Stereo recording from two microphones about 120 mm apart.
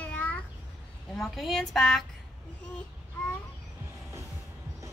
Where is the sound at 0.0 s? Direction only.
15° left (ahead or behind).